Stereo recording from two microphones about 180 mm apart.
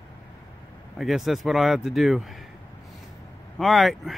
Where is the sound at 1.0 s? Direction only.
Centre (ahead or behind).